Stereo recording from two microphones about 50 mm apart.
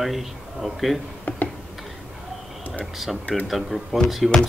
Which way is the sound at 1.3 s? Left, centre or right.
Left.